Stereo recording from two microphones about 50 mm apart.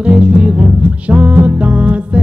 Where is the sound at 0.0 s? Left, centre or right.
Right.